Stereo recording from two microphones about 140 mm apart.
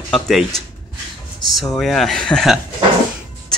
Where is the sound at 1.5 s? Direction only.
Centre (ahead or behind).